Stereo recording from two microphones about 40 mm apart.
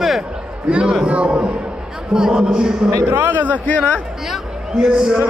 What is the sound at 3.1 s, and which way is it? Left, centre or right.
Speech, right.